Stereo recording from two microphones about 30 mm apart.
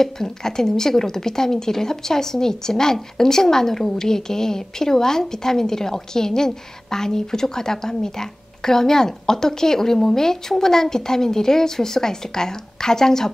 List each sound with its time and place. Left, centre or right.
0.0 s a woman's voice: centre